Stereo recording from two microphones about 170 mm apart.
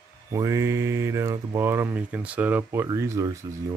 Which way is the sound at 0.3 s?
15° right (ahead or behind).